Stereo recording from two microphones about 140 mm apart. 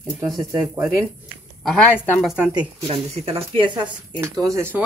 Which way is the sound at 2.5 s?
40° right (ahead or behind).